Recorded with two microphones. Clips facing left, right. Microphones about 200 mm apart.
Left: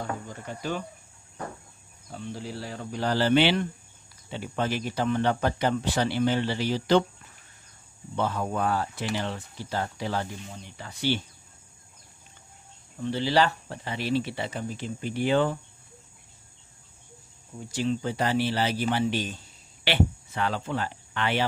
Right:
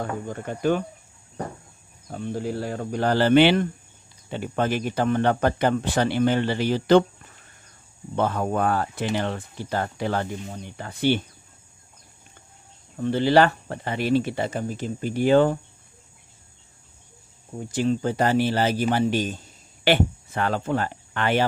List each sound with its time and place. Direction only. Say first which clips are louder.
0.3 s speech: right 9 dB; 55° right (ahead or behind)
2.0 s speech: right 8 dB; 50° right (ahead or behind)
8.2 s speech: right 4 dB; 55° right (ahead or behind)
12.9 s speech: right 6 dB; 55° right (ahead or behind)
17.6 s speech: right 5 dB; 50° right (ahead or behind)